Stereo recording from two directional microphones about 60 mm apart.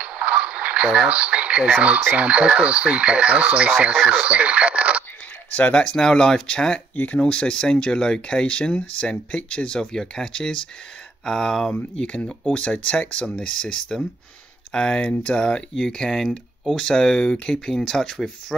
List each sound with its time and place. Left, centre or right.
0.0 s radio: centre
2.1 s speech: right
5.5 s speech: left